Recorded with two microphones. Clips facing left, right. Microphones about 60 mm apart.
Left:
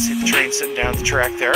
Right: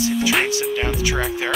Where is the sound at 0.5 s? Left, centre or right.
Left.